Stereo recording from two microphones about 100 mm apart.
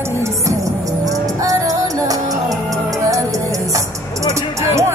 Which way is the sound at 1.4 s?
35° right (ahead or behind).